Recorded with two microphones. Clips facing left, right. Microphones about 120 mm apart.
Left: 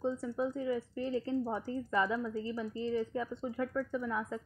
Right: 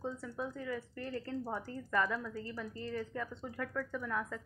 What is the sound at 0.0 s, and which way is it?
Speech, 20° left (ahead or behind).